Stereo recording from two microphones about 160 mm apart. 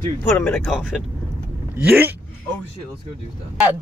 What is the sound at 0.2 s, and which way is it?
Speech, 10° left (ahead or behind).